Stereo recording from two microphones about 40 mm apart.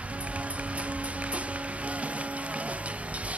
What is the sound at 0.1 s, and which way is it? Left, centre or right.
Music, right.